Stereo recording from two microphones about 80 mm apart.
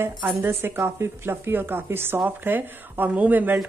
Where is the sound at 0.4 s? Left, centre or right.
Right.